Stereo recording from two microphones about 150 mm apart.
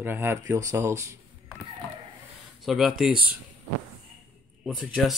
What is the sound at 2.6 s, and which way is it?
Speech, centre (ahead or behind).